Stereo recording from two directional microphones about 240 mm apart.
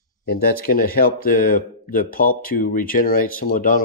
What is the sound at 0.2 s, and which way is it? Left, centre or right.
Speech, left.